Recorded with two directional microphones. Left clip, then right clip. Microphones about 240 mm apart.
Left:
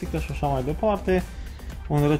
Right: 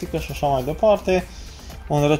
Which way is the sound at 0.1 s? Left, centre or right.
Right.